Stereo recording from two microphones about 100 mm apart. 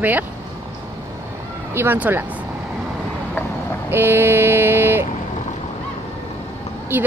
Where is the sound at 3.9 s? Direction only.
25° right (ahead or behind).